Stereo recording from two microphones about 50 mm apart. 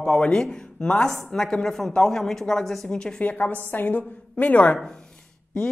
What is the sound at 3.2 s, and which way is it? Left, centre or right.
A woman's voice, left.